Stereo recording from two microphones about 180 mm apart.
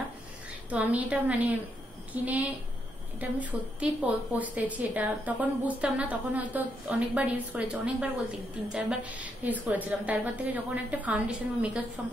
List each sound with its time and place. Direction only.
0.7 s a woman's voice: 10° right (ahead or behind)